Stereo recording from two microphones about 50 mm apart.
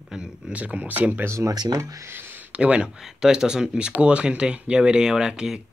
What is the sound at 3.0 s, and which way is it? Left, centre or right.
A man's voice, centre.